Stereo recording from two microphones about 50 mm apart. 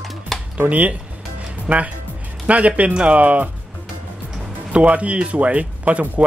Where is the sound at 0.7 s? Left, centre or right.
Right.